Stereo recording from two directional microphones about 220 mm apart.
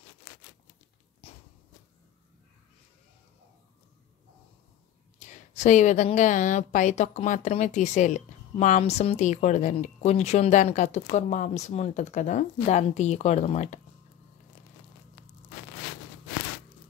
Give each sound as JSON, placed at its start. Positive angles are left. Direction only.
{"t": 5.2, "sound": "a woman's voice", "side_deg": 30}